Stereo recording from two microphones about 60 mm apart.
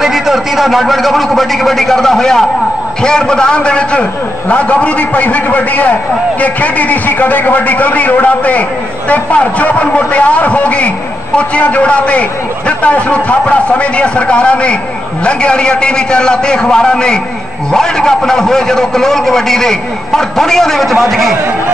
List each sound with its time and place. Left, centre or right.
0.0 s a man's voice: centre